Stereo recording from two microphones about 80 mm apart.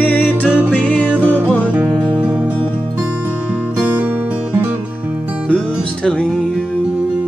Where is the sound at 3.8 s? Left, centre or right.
Right.